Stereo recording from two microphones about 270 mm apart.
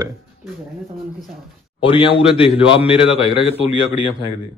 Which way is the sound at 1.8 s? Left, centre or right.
Centre.